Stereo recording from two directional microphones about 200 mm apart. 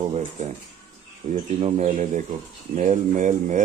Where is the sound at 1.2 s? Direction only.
30° right (ahead or behind).